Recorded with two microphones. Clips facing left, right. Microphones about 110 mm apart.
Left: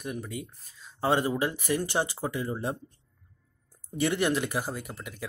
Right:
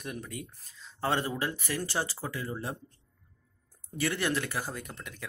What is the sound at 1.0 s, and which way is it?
Speech, 15° left (ahead or behind).